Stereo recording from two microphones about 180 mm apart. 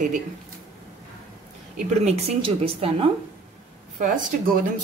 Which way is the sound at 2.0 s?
35° right (ahead or behind).